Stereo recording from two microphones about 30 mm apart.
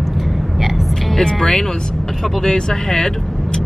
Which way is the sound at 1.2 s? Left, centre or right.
Centre.